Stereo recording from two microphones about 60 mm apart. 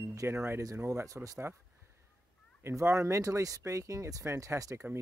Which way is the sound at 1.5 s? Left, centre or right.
Right.